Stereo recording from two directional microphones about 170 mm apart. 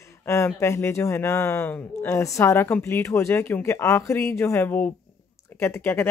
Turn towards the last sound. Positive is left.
turn(degrees=15)  # may be behind; listen again after turning